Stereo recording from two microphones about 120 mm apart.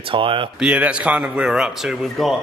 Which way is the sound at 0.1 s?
45° right (ahead or behind).